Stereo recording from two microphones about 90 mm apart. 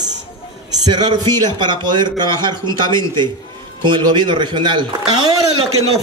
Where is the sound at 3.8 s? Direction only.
60° right (ahead or behind).